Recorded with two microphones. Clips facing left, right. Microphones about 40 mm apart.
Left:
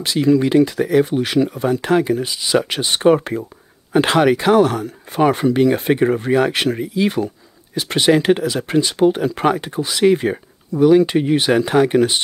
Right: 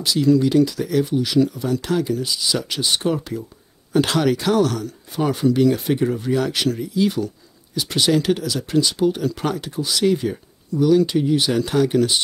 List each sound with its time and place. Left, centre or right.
0.0 s speech: left
3.9 s speech: left